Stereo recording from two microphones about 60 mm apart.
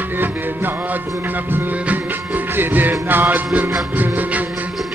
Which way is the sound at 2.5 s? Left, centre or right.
Right.